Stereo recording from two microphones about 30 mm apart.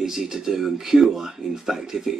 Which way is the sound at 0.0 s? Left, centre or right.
Centre.